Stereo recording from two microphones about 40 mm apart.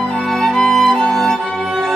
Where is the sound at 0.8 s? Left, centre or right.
Left.